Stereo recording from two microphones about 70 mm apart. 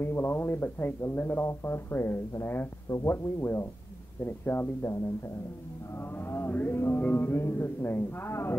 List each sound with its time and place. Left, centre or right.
0.0 s speech: left
2.9 s speech: left
4.5 s speech: left
6.2 s mantra: left
6.5 s music: left